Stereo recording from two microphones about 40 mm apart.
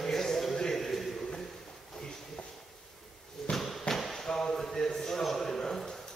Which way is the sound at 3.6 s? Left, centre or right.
Centre.